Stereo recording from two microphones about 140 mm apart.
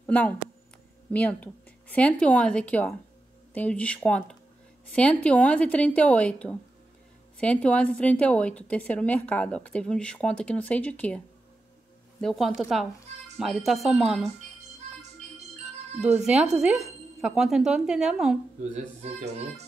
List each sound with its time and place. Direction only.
0.0 s a sound: 10° left (ahead or behind)
1.1 s a woman's voice: 10° left (ahead or behind)
16.2 s speech: 5° right (ahead or behind)
18.6 s speech: 50° right (ahead or behind)